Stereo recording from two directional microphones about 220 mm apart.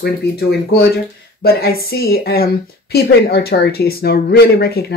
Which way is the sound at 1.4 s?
45° left (ahead or behind).